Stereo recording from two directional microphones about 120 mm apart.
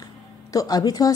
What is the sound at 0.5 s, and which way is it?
Speech, 30° left (ahead or behind).